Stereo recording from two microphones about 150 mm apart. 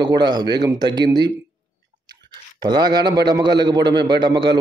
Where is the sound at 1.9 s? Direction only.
80° right.